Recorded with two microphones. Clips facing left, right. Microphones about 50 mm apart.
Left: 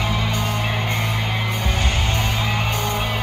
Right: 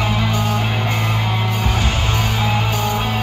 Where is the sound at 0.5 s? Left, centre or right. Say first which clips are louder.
Right 3 dB; right.